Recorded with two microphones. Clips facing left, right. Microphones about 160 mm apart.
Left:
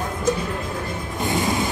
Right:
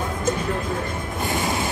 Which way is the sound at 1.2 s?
20° left (ahead or behind).